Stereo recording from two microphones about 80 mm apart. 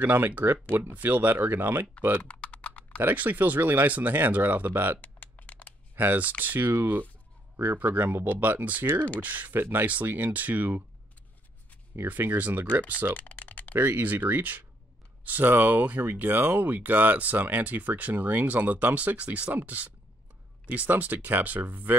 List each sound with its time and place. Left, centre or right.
0.0 s speech: right
2.2 s typing: centre
3.0 s speech: right
5.0 s typing: centre
5.9 s speech: right
11.9 s speech: right
13.2 s typing: centre
13.7 s speech: right